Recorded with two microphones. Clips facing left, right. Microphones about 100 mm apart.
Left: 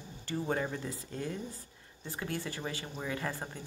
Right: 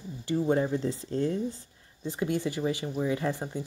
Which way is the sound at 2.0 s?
20° right (ahead or behind).